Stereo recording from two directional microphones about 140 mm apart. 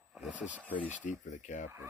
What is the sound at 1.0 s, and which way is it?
Speech, 60° left (ahead or behind).